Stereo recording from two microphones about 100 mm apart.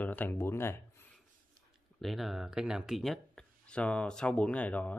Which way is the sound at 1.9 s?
Centre (ahead or behind).